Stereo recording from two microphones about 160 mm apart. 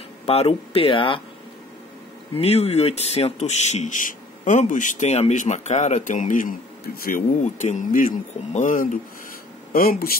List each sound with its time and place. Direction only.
0.3 s speech: 40° left (ahead or behind)
2.3 s speech: 40° left (ahead or behind); by 8.9 s 55° left (ahead or behind)
9.7 s speech: 65° left (ahead or behind)